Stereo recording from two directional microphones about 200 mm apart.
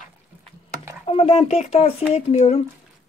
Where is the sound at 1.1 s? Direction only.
30° left (ahead or behind).